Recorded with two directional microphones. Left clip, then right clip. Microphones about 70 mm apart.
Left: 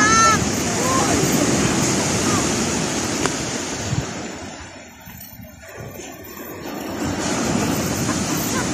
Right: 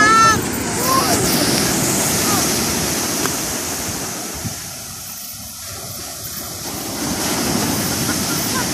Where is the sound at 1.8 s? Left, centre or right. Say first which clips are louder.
Right 1 dB; right.